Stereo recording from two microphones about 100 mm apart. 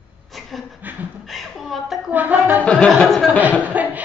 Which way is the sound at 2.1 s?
15° right (ahead or behind).